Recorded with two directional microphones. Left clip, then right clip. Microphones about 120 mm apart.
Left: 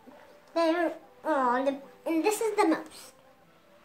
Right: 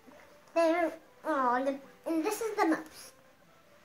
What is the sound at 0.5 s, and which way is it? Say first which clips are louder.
Music: left 1 dB; 25° left (ahead or behind).